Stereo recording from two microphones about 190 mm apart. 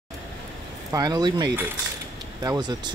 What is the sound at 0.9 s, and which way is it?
Speech, 20° right (ahead or behind).